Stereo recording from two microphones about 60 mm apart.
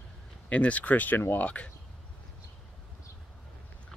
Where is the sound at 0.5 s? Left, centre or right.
Left.